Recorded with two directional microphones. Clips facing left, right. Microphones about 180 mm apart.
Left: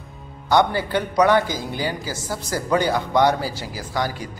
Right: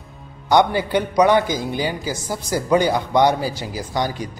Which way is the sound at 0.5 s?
15° right (ahead or behind).